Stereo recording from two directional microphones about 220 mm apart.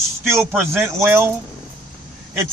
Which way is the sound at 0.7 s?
10° right (ahead or behind).